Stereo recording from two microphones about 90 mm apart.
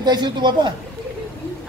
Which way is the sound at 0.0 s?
55° right (ahead or behind).